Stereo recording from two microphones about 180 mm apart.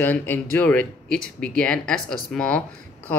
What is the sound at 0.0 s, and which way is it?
Speech, 10° left (ahead or behind).